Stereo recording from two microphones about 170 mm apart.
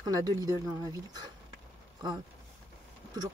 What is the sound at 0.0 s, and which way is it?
Speech, 20° right (ahead or behind).